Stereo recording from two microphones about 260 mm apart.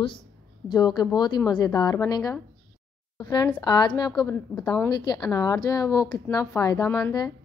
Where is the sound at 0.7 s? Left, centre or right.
Centre.